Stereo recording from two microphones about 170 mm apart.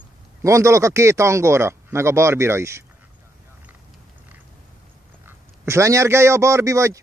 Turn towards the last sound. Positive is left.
turn(degrees=-15)  # may be behind; listen again after turning